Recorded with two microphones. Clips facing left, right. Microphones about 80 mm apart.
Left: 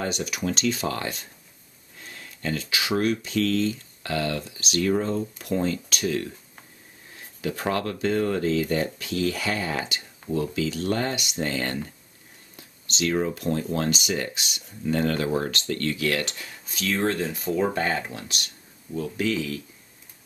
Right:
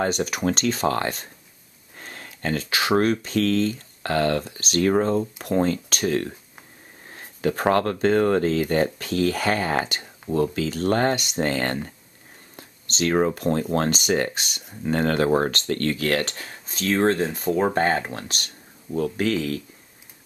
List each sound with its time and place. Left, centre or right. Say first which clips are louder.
0.0 s speech: right 5 dB; right